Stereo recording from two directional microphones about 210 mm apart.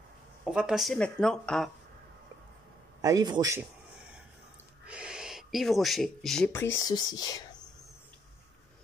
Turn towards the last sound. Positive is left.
turn(degrees=20)  # may be behind; listen again after turning